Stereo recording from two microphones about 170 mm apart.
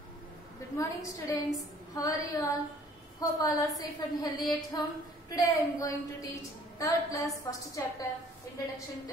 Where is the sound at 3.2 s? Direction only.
20° left (ahead or behind).